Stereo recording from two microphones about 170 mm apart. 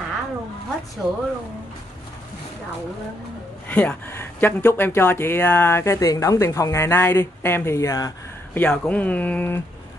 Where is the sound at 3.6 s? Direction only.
10° left (ahead or behind).